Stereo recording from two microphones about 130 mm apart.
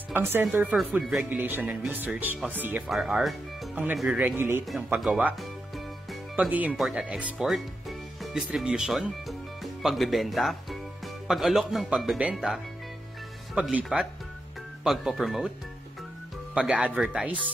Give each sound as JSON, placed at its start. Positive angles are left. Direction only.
{"t": 0.1, "sound": "speech", "side_deg": -15}
{"t": 2.9, "sound": "speech", "side_deg": 0}
{"t": 6.5, "sound": "speech", "side_deg": -10}
{"t": 13.6, "sound": "speech", "side_deg": -5}
{"t": 16.5, "sound": "speech", "side_deg": -5}